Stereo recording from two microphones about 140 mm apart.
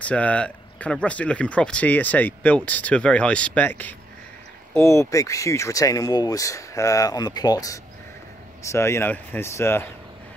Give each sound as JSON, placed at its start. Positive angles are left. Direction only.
{"t": 0.0, "sound": "speech", "side_deg": 10}